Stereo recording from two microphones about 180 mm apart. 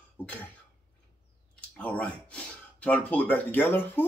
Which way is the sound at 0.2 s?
10° left (ahead or behind).